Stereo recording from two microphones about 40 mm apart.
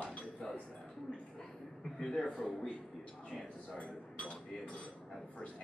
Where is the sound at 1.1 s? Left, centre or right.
Left.